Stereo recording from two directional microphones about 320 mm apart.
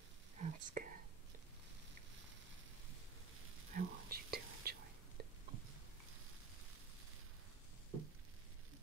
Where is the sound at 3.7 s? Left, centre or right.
Right.